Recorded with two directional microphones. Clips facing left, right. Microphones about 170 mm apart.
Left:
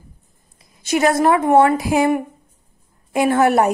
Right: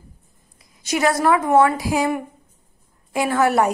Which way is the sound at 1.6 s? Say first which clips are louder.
Left 2 dB; 20° left (ahead or behind).